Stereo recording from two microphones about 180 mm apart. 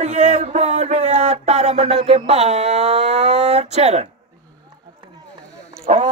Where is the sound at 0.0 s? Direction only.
40° right (ahead or behind).